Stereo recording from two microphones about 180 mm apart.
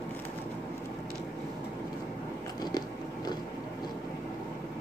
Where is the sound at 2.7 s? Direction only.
25° left (ahead or behind).